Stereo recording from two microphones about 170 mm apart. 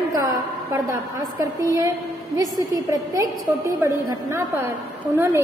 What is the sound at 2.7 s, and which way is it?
A woman's voice, 20° right (ahead or behind).